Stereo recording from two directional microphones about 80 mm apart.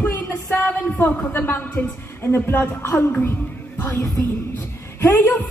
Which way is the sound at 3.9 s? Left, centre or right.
Left.